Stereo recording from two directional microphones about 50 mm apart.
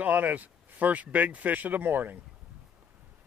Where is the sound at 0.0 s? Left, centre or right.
Right.